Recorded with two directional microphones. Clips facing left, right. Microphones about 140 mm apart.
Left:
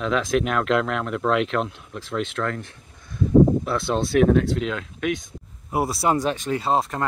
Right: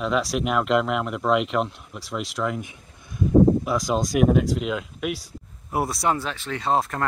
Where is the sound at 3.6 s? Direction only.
10° right (ahead or behind).